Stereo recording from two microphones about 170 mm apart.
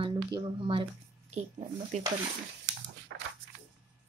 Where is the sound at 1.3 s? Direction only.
45° right (ahead or behind).